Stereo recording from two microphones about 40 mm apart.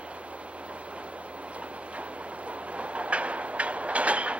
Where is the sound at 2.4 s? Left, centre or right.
Right.